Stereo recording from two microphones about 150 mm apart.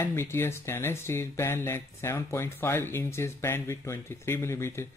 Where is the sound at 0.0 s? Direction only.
15° left (ahead or behind).